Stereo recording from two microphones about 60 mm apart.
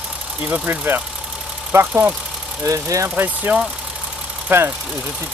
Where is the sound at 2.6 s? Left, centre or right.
Right.